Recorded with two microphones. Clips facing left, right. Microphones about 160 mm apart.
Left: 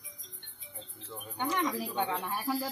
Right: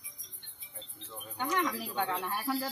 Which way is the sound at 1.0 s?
20° left (ahead or behind).